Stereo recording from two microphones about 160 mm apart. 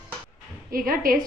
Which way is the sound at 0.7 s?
65° right (ahead or behind).